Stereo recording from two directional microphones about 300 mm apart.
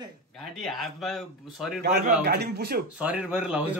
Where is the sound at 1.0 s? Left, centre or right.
Centre.